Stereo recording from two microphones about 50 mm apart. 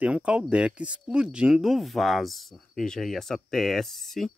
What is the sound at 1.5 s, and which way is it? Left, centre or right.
Speech, centre.